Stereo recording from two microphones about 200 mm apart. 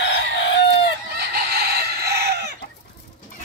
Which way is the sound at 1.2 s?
55° right (ahead or behind).